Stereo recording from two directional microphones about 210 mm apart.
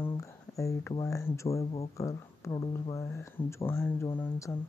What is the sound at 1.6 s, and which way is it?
Speech, 30° left (ahead or behind).